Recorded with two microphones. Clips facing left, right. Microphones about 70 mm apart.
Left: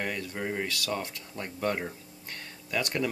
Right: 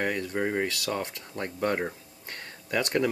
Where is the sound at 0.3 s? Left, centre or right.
Right.